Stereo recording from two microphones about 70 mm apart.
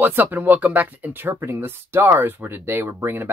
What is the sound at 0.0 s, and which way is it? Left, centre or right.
Speech, right.